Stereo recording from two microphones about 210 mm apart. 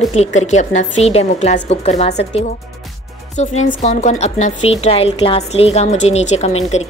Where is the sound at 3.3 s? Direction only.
35° left (ahead or behind).